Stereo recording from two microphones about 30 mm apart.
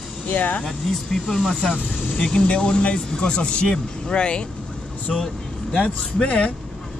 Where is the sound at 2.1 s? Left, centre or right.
Left.